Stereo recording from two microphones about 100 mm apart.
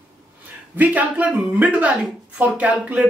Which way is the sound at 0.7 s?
15° right (ahead or behind).